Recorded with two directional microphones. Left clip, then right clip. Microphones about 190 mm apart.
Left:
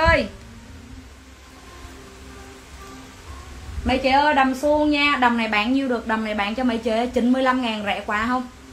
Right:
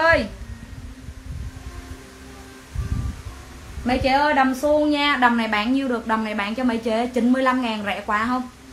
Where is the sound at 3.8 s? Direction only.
10° right (ahead or behind).